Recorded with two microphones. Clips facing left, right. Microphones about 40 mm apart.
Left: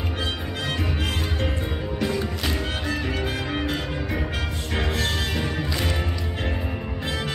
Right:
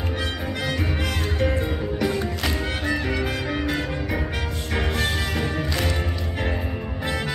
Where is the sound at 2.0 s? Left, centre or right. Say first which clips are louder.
Right 1 dB; centre.